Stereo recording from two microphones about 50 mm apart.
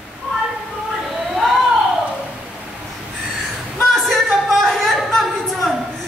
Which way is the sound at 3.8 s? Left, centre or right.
Centre.